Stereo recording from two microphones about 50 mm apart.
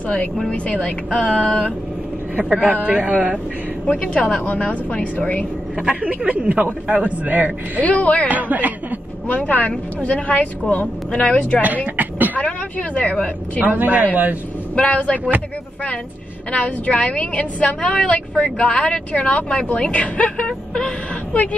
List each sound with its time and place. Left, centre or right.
0.5 s a woman's voice: left
2.3 s speech: right
3.8 s a woman's voice: left
5.8 s speech: right
7.8 s a woman's voice: left
8.3 s speech: right
9.3 s a woman's voice: left
11.6 s speech: right
12.4 s a woman's voice: left
13.7 s speech: right
14.8 s a woman's voice: left
16.5 s a woman's voice: left
20.4 s vehicle: centre